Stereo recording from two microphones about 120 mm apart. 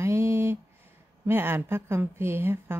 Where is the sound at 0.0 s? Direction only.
25° right (ahead or behind).